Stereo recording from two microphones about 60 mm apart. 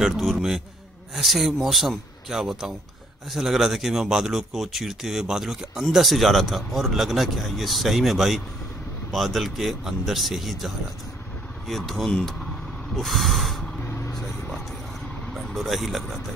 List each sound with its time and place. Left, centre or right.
0.0 s speech: centre
13.8 s vehicle: left
15.3 s speech: centre